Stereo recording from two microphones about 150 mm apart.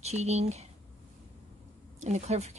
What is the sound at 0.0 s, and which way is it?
Speech, 45° right (ahead or behind).